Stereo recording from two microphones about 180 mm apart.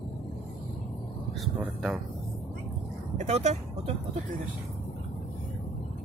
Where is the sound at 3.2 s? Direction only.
40° right (ahead or behind).